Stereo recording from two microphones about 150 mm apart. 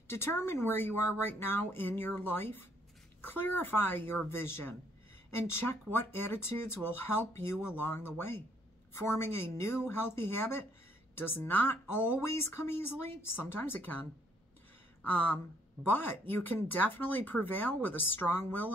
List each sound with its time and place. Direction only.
0.1 s speech: 15° left (ahead or behind)
15.9 s speech: 15° left (ahead or behind)